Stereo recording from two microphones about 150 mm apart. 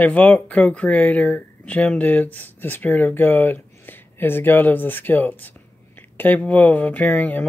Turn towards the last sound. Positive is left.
turn(degrees=10)  # may be behind; listen again after turning